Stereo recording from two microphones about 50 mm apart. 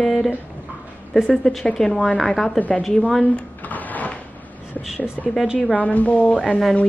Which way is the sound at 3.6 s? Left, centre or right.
Left.